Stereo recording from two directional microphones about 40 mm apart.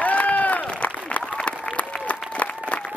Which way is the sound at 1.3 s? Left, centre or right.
Left.